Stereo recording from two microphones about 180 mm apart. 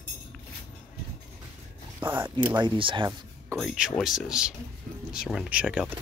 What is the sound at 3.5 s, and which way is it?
Speech, 5° right (ahead or behind).